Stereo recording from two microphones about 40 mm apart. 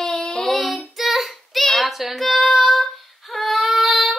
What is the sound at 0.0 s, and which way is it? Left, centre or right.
Child singing, centre.